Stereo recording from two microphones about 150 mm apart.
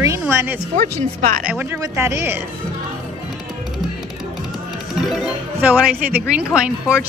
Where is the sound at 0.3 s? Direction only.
15° right (ahead or behind).